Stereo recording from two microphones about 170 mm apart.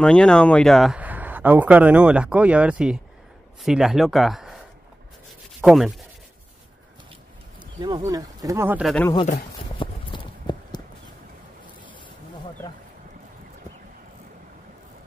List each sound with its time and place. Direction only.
0.0 s speech: 5° left (ahead or behind)
5.6 s speech: centre (ahead or behind)
7.8 s speech: 25° right (ahead or behind)
8.8 s speech: 5° left (ahead or behind)
9.6 s clip-clop: 30° left (ahead or behind)